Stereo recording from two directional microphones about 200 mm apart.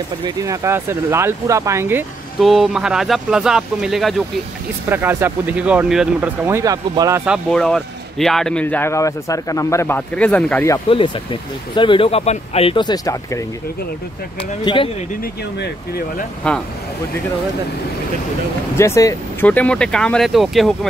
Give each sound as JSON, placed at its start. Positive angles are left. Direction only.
{"t": 0.2, "sound": "speech", "side_deg": -15}
{"t": 7.5, "sound": "speech", "side_deg": 0}
{"t": 11.7, "sound": "speech", "side_deg": 25}
{"t": 14.6, "sound": "speech", "side_deg": 25}
{"t": 16.4, "sound": "speech", "side_deg": 5}
{"t": 18.8, "sound": "speech", "side_deg": 15}